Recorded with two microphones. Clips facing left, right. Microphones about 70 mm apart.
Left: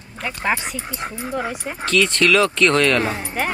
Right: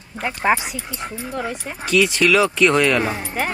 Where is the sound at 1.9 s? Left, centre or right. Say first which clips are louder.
Right 1 dB; centre.